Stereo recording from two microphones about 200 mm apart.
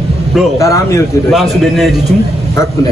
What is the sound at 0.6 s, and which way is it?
Speech, 15° left (ahead or behind).